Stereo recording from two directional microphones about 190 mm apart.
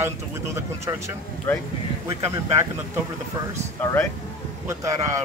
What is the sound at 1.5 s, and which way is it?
Speech, 10° left (ahead or behind).